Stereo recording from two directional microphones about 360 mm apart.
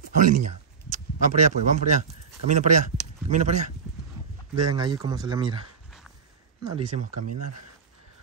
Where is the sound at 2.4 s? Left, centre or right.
Centre.